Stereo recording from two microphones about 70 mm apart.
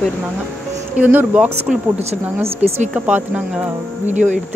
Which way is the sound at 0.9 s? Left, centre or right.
Right.